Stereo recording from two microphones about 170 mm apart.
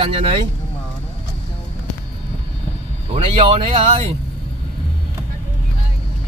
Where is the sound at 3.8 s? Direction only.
35° right (ahead or behind).